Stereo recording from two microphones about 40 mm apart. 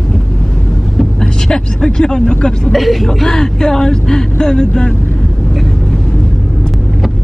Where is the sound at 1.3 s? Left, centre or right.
Centre.